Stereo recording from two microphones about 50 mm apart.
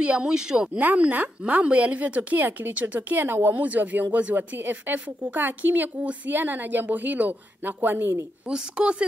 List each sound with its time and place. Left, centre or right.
0.0 s speech: right
0.7 s speech: right
4.4 s speech: right
8.5 s speech: centre